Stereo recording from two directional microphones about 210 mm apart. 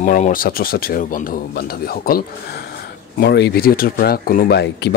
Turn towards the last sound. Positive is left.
turn(degrees=50)  # may be behind; listen again after turning